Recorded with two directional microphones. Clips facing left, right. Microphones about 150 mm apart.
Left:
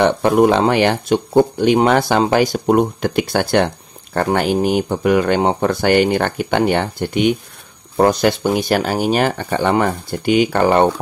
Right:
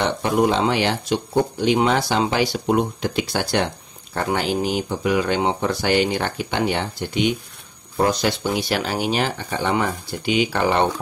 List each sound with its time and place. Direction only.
0.0 s speech: 55° left (ahead or behind)